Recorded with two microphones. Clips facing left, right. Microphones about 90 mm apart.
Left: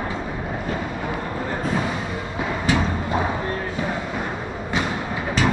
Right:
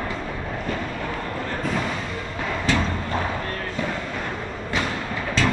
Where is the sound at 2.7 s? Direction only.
15° left (ahead or behind).